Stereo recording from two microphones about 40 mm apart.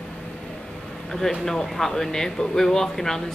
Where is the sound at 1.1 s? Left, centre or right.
Centre.